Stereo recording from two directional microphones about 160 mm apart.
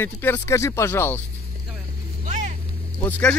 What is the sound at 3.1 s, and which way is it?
Speech, 10° left (ahead or behind).